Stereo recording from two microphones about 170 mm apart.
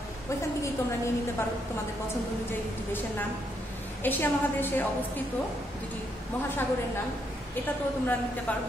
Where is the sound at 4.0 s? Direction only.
10° left (ahead or behind).